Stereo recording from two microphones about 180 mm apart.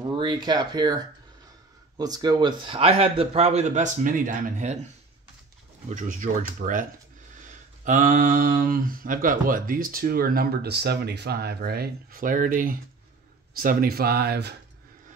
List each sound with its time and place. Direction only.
0.2 s a man's voice: 25° right (ahead or behind); by 4.7 s 45° right (ahead or behind)
5.9 s speech: 45° right (ahead or behind); by 14.5 s 65° right (ahead or behind)